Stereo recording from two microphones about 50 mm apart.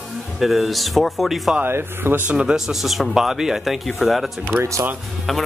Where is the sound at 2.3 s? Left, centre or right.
Right.